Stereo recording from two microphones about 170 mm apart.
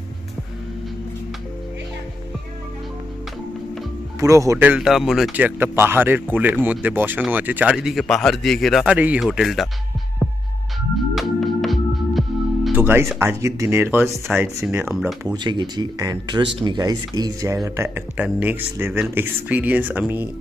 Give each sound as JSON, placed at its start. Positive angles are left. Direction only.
{"t": 4.2, "sound": "speech", "side_deg": -20}
{"t": 11.1, "sound": "music", "side_deg": 0}
{"t": 12.7, "sound": "speech", "side_deg": -15}
{"t": 15.2, "sound": "speech", "side_deg": -25}